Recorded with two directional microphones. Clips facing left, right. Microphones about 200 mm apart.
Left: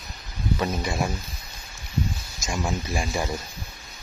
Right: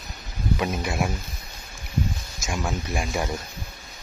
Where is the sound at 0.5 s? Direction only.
5° right (ahead or behind).